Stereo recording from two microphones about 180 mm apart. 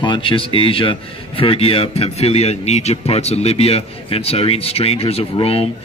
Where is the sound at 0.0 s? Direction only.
25° left (ahead or behind).